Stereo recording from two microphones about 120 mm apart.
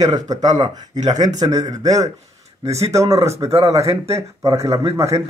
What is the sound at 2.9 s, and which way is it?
Speech, 25° right (ahead or behind).